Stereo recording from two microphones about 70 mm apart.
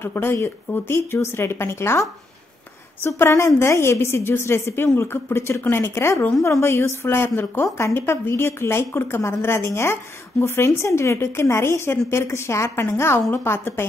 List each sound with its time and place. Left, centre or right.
0.0 s a woman's voice: left
3.2 s a woman's voice: left
7.6 s speech: left
7.9 s a woman's voice: left